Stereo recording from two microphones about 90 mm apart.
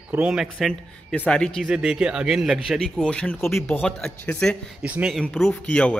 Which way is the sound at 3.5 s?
25° left (ahead or behind).